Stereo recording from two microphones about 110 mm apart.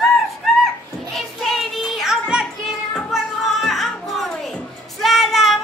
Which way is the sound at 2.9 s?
Centre (ahead or behind).